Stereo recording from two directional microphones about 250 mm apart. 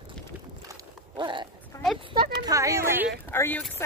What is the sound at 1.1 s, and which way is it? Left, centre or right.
A woman's voice, centre.